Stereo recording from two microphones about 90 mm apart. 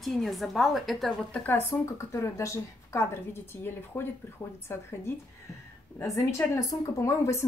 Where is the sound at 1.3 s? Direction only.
20° left (ahead or behind).